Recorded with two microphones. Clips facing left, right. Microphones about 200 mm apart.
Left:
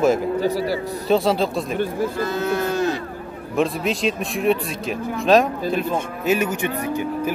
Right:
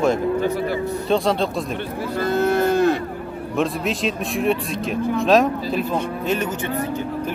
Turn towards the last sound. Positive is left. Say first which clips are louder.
# left 1 dB
turn(degrees=10)  # may be behind; listen again after turning